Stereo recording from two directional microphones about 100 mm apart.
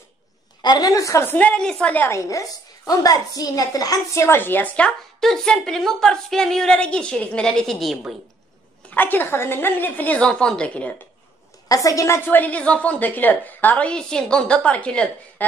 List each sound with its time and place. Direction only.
0.6 s a woman's voice: 45° left (ahead or behind); by 2.1 s 15° left (ahead or behind)
2.1 s a woman's voice: 30° left (ahead or behind); by 8.0 s centre (ahead or behind)
8.9 s a woman's voice: 20° left (ahead or behind)
11.7 s a woman's voice: 35° left (ahead or behind); by 15.4 s 10° left (ahead or behind)